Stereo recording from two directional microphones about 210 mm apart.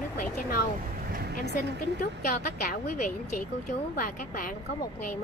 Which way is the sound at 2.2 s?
40° left (ahead or behind).